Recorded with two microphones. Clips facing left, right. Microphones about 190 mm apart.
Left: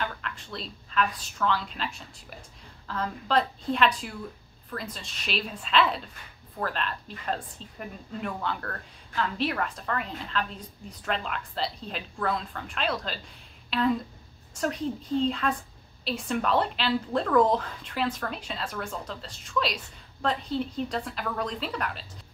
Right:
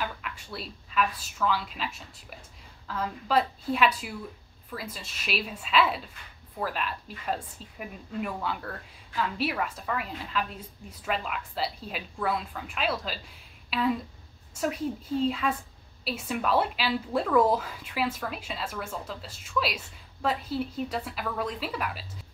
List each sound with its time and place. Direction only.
0.0 s a woman's voice: 10° right (ahead or behind)